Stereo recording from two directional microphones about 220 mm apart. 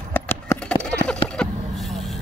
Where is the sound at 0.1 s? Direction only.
10° left (ahead or behind).